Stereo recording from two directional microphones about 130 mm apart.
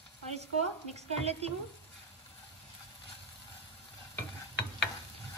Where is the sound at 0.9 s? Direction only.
50° right (ahead or behind).